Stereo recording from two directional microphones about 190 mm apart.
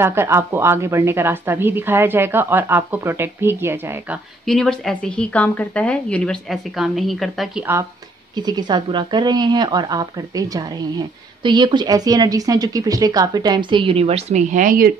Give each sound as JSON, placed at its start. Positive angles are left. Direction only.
{"t": 0.0, "sound": "a woman's voice", "side_deg": -15}
{"t": 4.5, "sound": "a woman's voice", "side_deg": 5}
{"t": 8.4, "sound": "speech", "side_deg": -20}